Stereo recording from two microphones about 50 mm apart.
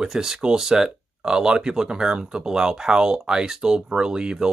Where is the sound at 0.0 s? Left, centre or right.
Centre.